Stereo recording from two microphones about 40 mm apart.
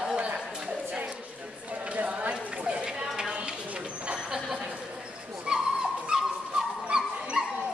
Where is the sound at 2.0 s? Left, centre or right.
Right.